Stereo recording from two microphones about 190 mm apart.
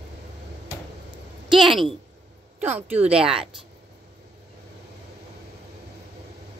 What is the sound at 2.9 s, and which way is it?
Speech, 35° right (ahead or behind).